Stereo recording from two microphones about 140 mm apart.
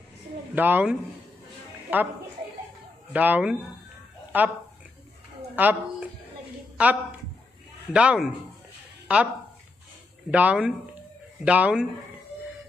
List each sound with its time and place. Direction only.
0.6 s speech: 15° right (ahead or behind)
3.1 s speech: 10° right (ahead or behind)
5.6 s speech: 10° right (ahead or behind)
9.0 s a sound: 10° right (ahead or behind)
10.3 s speech: 10° right (ahead or behind)